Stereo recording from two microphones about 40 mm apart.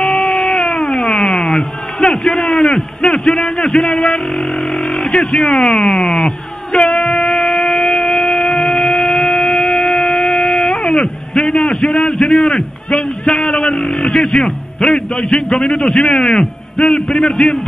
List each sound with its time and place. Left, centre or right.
0.0 s music: centre
4.8 s vehicle: centre
5.1 s a man's voice: centre
6.9 s a sound: centre
11.7 s a man's voice: centre